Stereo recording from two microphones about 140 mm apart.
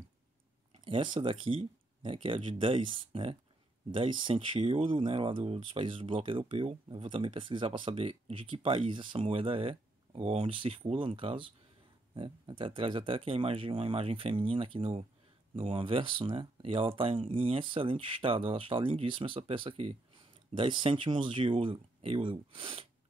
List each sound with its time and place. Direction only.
0.8 s speech: 35° right (ahead or behind)